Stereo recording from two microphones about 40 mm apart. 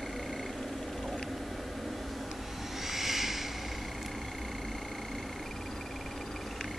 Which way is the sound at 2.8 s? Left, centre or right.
Centre.